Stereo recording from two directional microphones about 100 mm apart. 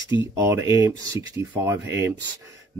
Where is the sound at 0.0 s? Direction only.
30° right (ahead or behind).